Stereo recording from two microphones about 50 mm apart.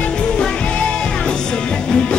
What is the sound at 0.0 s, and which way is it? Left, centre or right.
Music, centre.